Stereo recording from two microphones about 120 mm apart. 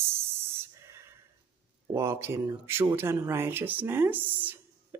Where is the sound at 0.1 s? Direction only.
20° right (ahead or behind).